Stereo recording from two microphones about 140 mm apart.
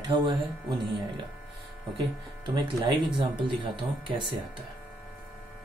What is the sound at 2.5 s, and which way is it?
Speech, 30° right (ahead or behind).